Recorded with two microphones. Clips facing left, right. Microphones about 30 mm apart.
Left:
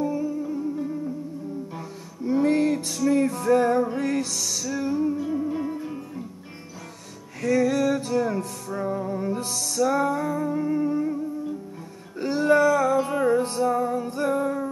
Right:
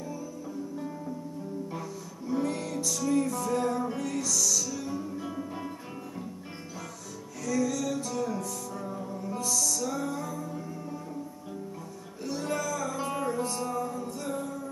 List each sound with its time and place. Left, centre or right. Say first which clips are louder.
0.0 s music: left 12 dB; left
2.4 s music: left 10 dB; left
5.2 s music: left 9 dB; centre
5.5 s music: left 9 dB; centre
7.4 s music: left 8 dB; left
12.2 s music: left 13 dB; left
12.9 s music: left 10 dB; left